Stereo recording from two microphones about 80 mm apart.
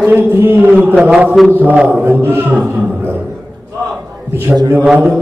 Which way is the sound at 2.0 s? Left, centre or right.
Right.